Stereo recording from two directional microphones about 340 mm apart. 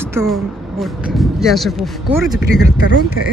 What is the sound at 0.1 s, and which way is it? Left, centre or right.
Speech, centre.